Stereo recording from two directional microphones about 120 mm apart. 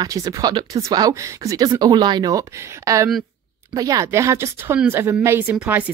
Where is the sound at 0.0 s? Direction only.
30° right (ahead or behind).